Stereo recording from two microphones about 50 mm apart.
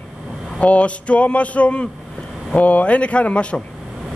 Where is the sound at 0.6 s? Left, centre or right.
Left.